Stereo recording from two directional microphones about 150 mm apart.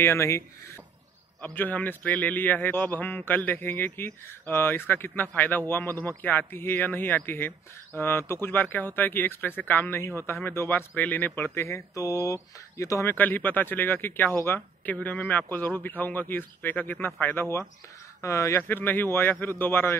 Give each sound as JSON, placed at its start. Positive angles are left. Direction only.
{"t": 0.0, "sound": "speech", "side_deg": 15}